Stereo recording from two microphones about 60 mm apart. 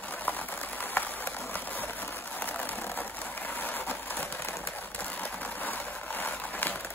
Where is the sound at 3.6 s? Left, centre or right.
Left.